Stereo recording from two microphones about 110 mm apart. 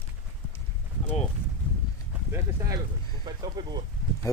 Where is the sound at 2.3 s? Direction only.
25° right (ahead or behind).